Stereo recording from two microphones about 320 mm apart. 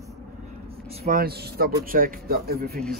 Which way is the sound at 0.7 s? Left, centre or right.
Centre.